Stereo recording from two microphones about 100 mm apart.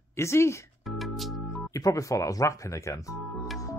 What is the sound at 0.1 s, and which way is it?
Speech, 25° left (ahead or behind).